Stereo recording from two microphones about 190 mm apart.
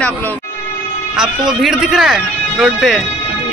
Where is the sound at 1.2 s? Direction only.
5° right (ahead or behind).